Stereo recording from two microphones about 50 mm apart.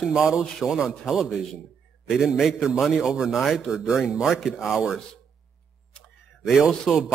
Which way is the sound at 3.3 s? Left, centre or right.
Centre.